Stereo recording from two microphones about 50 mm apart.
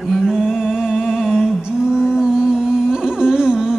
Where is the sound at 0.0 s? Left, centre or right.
Centre.